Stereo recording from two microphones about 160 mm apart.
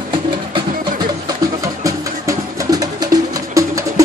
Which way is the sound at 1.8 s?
20° right (ahead or behind).